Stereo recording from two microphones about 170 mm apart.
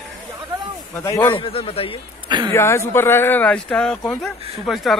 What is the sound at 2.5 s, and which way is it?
Speech, 15° left (ahead or behind).